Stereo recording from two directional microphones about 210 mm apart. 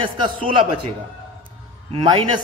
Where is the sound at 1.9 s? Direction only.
25° right (ahead or behind).